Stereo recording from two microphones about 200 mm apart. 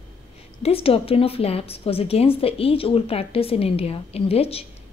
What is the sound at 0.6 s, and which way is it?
A woman's voice, 30° left (ahead or behind).